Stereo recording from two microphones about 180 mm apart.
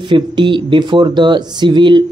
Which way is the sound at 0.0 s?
25° right (ahead or behind).